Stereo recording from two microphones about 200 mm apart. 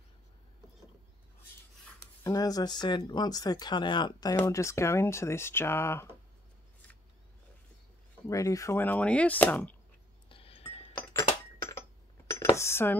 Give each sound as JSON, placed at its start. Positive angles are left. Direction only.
{"t": 2.2, "sound": "speech", "side_deg": 20}
{"t": 8.3, "sound": "speech", "side_deg": 15}
{"t": 10.3, "sound": "chink", "side_deg": 30}
{"t": 12.3, "sound": "dishes", "side_deg": 15}